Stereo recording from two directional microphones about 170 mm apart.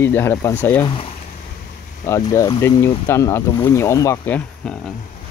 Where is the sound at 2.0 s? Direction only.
15° left (ahead or behind).